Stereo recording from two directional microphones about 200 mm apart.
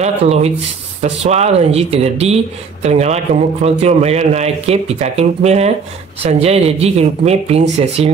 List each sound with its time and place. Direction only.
0.0 s speech: 30° right (ahead or behind)